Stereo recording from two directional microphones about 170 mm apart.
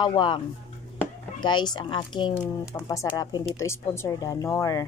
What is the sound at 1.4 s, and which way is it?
Speech, 25° left (ahead or behind).